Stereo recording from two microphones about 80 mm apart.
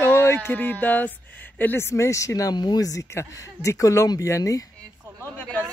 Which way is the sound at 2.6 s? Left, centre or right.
Left.